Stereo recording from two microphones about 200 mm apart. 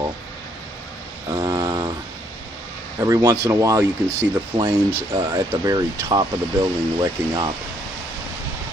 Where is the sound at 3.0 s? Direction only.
15° right (ahead or behind).